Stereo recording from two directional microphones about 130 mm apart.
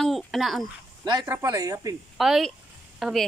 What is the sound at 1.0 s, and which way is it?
Speech, 30° right (ahead or behind).